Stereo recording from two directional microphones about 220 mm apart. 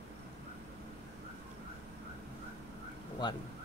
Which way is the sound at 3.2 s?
20° left (ahead or behind).